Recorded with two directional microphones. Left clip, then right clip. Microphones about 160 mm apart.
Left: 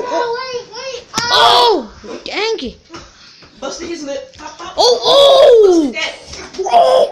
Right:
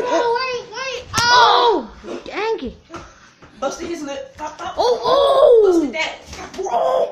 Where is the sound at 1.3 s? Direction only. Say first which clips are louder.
Left 3 dB; 20° left (ahead or behind).